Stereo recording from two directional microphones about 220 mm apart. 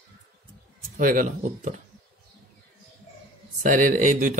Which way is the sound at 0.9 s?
40° right (ahead or behind).